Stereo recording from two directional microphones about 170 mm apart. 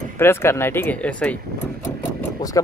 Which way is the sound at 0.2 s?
15° left (ahead or behind).